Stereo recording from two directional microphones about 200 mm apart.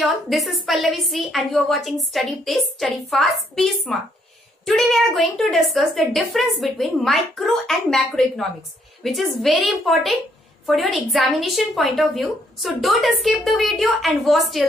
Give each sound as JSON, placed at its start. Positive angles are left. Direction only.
{"t": 0.0, "sound": "a woman's voice", "side_deg": 0}